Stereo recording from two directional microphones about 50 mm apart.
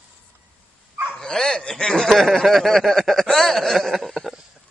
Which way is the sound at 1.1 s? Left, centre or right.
Centre.